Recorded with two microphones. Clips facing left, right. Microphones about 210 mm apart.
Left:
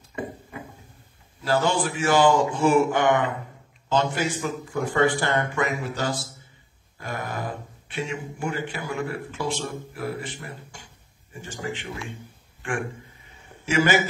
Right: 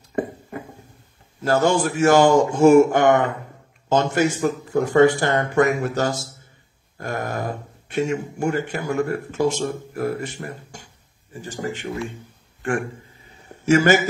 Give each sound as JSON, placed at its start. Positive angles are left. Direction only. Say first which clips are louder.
{"t": 0.1, "sound": "a sound", "louder": "right 7 dB", "side_deg": -45}
{"t": 1.4, "sound": "a man's voice", "louder": "right 5 dB", "side_deg": -45}
{"t": 13.7, "sound": "speech", "louder": "right 5 dB", "side_deg": -45}